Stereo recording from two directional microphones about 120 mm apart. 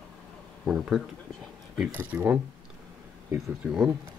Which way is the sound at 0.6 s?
5° right (ahead or behind).